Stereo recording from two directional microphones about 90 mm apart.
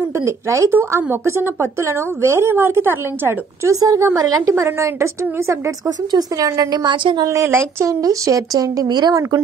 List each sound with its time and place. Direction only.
0.2 s a woman's voice: 35° right (ahead or behind); by 7.2 s 60° right (ahead or behind)
7.2 s a woman's voice: 35° right (ahead or behind)